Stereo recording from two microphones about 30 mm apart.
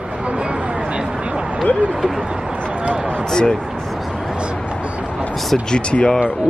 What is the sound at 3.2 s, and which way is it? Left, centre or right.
Speech, centre.